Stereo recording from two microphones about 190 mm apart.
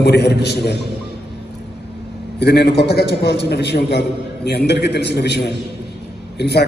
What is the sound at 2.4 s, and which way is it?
A man's voice, 60° left (ahead or behind).